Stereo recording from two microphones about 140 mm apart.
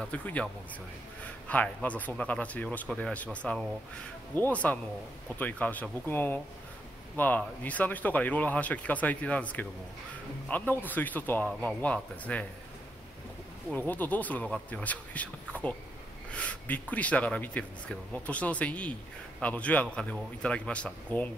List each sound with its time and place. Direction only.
0.0 s speech: 10° left (ahead or behind)
1.5 s speech: 10° left (ahead or behind)
4.4 s speech: 10° left (ahead or behind)
13.7 s speech: 10° left (ahead or behind)